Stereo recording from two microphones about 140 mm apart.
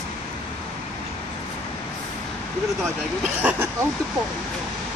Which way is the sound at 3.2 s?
10° right (ahead or behind).